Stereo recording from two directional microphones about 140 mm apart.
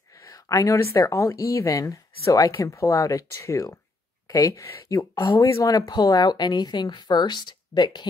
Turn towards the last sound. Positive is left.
turn(degrees=35)  # may be behind; listen again after turning